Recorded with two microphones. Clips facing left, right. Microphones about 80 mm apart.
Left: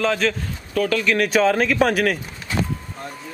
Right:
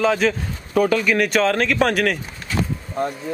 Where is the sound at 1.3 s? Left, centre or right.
Centre.